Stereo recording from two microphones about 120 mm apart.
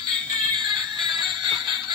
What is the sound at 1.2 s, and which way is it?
Music, 40° right (ahead or behind).